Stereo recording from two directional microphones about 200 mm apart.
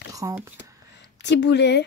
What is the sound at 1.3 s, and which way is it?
Speech, 60° left (ahead or behind).